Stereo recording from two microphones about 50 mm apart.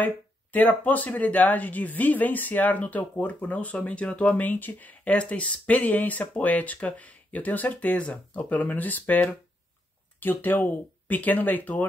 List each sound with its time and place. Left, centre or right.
0.0 s speech: left
4.5 s speech: left